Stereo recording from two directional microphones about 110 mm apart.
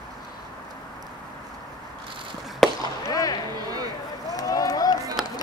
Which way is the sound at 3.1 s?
35° left (ahead or behind).